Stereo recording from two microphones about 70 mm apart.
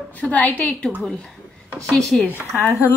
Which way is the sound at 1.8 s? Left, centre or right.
Centre.